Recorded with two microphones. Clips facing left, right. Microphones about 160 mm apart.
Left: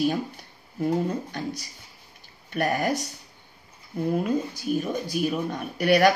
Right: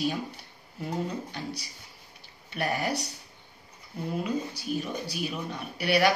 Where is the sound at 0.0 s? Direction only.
45° left (ahead or behind).